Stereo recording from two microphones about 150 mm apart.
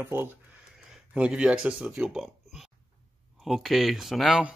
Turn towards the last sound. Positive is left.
turn(degrees=-5)  # may be behind; listen again after turning